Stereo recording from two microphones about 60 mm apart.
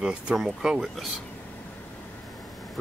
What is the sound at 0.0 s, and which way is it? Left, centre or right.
Speech, centre.